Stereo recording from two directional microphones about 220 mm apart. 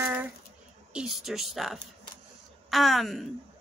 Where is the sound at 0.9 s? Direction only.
Centre (ahead or behind).